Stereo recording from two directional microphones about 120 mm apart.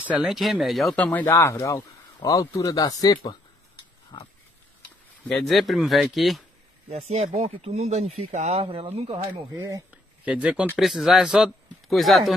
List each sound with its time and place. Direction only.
0.1 s speech: 5° right (ahead or behind)
0.9 s speech: 10° left (ahead or behind)
1.2 s speech: 25° left (ahead or behind)
4.1 s speech: 40° left (ahead or behind)
5.3 s speech: centre (ahead or behind)
6.9 s speech: 65° right (ahead or behind)
8.5 s speech: 50° right (ahead or behind)
9.5 s speech: 25° right (ahead or behind)
10.2 s speech: 10° right (ahead or behind)